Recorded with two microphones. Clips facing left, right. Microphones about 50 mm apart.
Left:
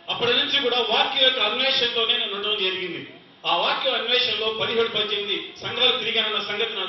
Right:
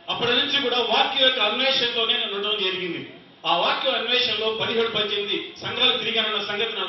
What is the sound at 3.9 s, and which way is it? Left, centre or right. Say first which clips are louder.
Speech: even; centre.